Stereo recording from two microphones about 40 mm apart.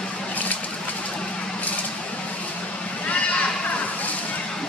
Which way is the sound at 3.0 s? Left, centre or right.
Left.